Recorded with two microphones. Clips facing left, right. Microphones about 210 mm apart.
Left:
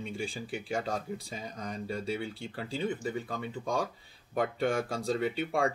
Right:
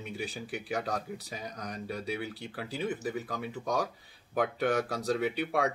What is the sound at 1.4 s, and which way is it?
Speech, 70° right (ahead or behind).